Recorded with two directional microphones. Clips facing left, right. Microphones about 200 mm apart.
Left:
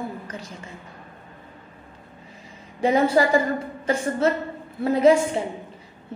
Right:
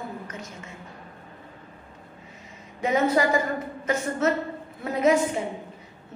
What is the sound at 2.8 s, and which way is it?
A woman's voice, 30° left (ahead or behind).